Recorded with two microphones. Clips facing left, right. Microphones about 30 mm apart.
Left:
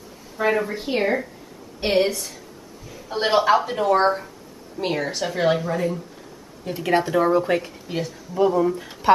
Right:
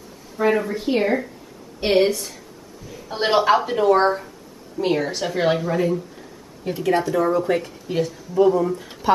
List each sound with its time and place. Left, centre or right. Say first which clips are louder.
0.4 s a woman's voice: right 2 dB; centre
6.9 s speech: left 1 dB; centre
7.5 s speech: right 2 dB; centre